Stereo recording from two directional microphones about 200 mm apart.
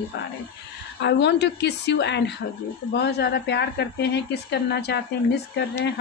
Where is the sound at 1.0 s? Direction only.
60° left (ahead or behind).